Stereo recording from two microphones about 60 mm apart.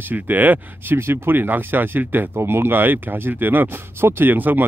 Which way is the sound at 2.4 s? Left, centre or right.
Right.